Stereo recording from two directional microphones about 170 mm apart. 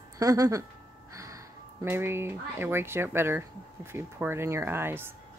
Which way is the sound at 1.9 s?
15° right (ahead or behind).